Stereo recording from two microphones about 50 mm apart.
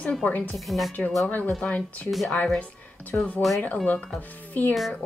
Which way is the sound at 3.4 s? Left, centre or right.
Centre.